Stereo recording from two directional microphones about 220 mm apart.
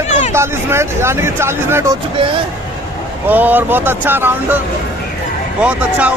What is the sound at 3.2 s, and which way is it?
Speech, 10° right (ahead or behind).